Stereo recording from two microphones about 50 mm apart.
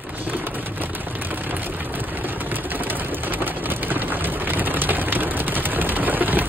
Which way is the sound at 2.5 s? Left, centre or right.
Right.